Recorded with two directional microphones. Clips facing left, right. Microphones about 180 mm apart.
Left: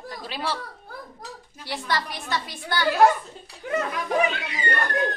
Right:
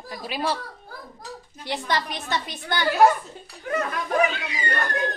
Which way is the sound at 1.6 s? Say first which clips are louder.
Right 2 dB; 20° right (ahead or behind).